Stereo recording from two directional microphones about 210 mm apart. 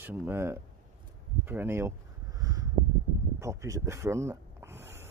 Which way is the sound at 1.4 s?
10° right (ahead or behind).